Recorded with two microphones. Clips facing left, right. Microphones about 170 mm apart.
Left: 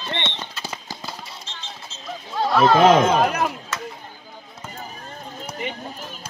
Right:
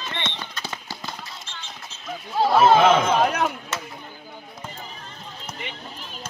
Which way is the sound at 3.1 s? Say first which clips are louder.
Left 1 dB; centre (ahead or behind).